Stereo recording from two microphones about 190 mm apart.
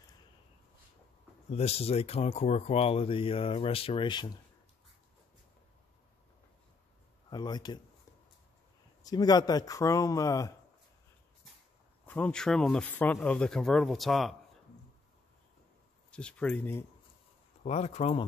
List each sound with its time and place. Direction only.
1.5 s speech: 35° left (ahead or behind)
7.2 s speech: 20° left (ahead or behind)
9.0 s speech: 20° left (ahead or behind)
12.1 s speech: 5° left (ahead or behind)
16.1 s speech: 5° left (ahead or behind)
17.6 s speech: 35° left (ahead or behind)